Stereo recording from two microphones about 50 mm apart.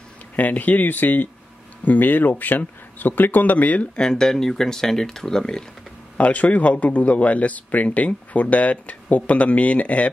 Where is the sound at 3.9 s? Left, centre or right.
Centre.